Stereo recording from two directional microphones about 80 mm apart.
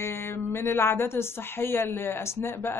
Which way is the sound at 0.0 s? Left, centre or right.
Left.